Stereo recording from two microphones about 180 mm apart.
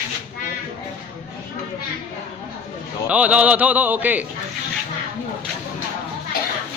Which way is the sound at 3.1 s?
5° right (ahead or behind).